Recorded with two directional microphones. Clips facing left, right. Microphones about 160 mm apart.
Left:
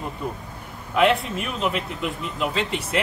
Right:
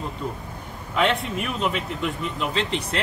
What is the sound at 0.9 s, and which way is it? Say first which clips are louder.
Speech: left 3 dB; 5° left (ahead or behind).